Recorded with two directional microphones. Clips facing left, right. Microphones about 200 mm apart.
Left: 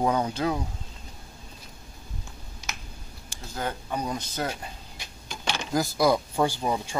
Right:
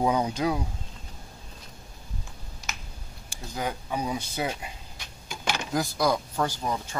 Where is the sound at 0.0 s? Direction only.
10° right (ahead or behind).